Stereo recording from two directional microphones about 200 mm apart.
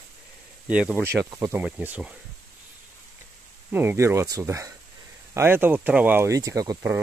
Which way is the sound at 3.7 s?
10° right (ahead or behind).